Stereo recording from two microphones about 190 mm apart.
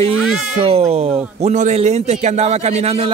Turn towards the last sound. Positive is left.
turn(degrees=-35)  # may be behind; listen again after turning